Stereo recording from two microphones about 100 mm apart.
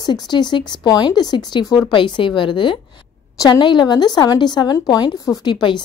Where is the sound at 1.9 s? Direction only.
55° left (ahead or behind).